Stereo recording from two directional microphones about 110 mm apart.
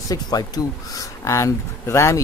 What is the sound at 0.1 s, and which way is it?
Speech, 35° left (ahead or behind).